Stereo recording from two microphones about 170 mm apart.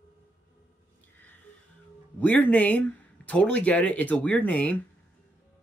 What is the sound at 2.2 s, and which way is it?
Speech, 10° left (ahead or behind).